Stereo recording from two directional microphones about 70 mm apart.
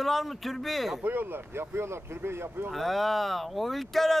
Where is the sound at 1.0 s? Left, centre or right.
Right.